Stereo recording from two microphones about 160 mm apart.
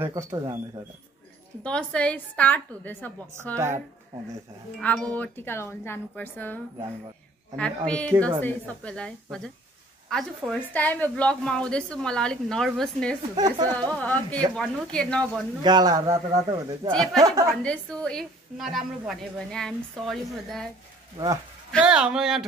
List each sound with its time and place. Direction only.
0.0 s a man's voice: 20° right (ahead or behind)
1.6 s speech: 5° left (ahead or behind)
4.7 s a woman's voice: 5° left (ahead or behind)
13.4 s a man's voice: 25° right (ahead or behind)
13.9 s a woman's voice: 10° left (ahead or behind)
15.6 s a man's voice: 25° right (ahead or behind)
17.5 s a woman's voice: 5° left (ahead or behind)
21.8 s a woman's voice: 5° right (ahead or behind)